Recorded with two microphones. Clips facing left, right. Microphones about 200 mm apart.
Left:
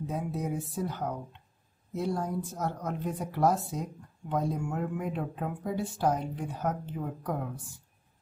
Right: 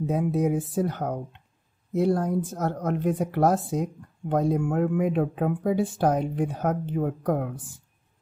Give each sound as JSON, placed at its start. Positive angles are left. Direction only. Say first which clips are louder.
{"t": 0.0, "sound": "speech", "louder": "right 9 dB", "side_deg": -75}